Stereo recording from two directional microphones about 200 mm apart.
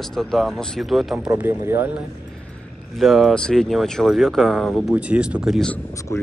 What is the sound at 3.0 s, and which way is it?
Speech, centre (ahead or behind).